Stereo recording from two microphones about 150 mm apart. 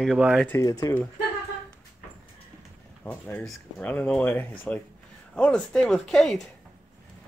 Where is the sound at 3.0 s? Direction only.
10° left (ahead or behind).